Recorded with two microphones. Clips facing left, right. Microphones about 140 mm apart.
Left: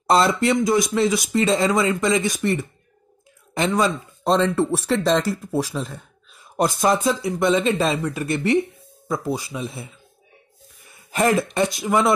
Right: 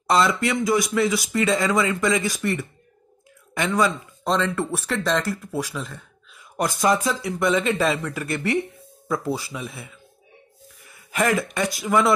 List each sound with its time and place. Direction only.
0.0 s speech: 35° left (ahead or behind)
0.6 s speech: 20° left (ahead or behind)